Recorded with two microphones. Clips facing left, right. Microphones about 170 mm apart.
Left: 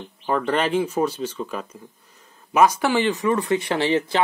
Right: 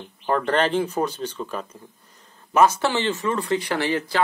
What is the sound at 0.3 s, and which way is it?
Speech, 10° left (ahead or behind).